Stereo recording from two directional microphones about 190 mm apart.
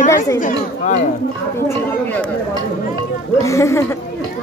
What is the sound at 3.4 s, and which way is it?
Speech, 15° left (ahead or behind).